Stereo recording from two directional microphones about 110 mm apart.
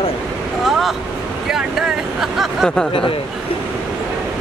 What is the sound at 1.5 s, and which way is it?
Speech, 5° right (ahead or behind).